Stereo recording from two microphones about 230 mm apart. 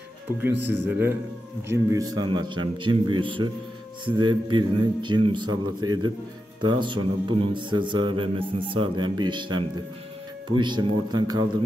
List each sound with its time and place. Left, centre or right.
0.7 s a man's voice: centre